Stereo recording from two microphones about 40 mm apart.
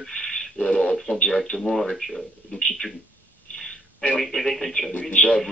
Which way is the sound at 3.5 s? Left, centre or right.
Centre.